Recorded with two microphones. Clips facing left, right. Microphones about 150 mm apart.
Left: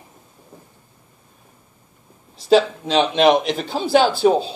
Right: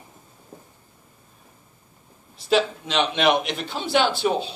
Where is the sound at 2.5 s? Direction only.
35° left (ahead or behind).